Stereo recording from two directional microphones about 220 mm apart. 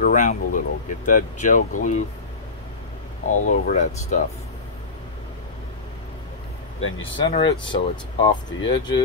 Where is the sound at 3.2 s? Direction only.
35° left (ahead or behind).